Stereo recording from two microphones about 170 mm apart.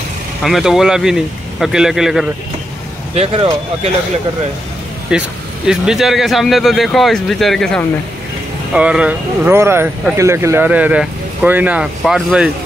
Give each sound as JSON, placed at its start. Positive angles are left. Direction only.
{"t": 0.4, "sound": "speech", "side_deg": 0}
{"t": 3.2, "sound": "speech", "side_deg": -35}
{"t": 5.1, "sound": "speech", "side_deg": -5}